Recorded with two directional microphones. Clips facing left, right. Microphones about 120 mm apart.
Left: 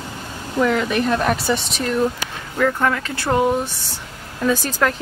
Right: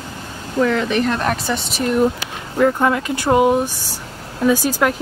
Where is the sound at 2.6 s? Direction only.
20° right (ahead or behind).